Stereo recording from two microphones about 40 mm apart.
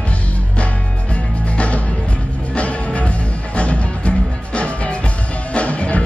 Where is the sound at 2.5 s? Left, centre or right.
Left.